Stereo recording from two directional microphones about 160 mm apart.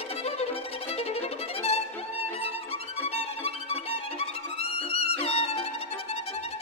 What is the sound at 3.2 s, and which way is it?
Music, 40° left (ahead or behind).